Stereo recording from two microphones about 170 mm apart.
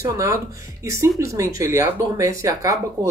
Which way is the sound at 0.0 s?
20° right (ahead or behind).